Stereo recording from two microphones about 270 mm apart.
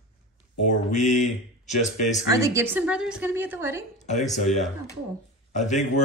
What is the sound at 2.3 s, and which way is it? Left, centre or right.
A woman's voice, centre.